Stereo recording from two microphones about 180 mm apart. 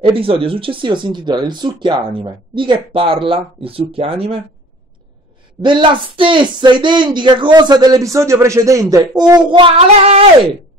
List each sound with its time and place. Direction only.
0.0 s speech: 30° right (ahead or behind)
5.6 s speech: 25° right (ahead or behind)